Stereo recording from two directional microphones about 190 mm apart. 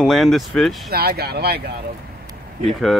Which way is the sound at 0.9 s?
55° right (ahead or behind).